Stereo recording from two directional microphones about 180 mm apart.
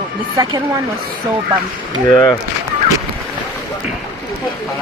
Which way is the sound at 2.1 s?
20° left (ahead or behind).